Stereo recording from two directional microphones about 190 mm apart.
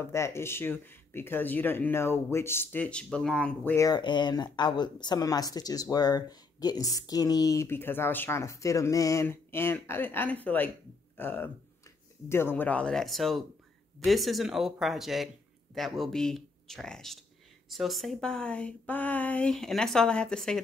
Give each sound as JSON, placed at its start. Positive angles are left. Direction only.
{"t": 0.0, "sound": "speech", "side_deg": 15}